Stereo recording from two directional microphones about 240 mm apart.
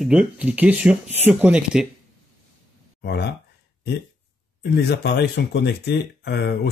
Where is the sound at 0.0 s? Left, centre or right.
Centre.